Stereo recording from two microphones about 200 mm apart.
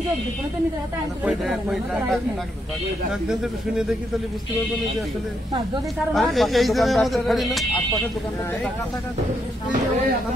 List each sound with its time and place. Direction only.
1.2 s speech: centre (ahead or behind)
6.1 s speech: centre (ahead or behind)